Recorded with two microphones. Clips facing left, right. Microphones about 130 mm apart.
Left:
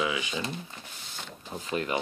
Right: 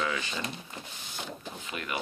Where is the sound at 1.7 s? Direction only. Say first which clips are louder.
Left 8 dB; 30° left (ahead or behind).